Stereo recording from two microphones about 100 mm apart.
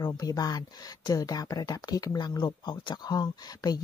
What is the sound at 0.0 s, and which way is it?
Speech, 35° left (ahead or behind).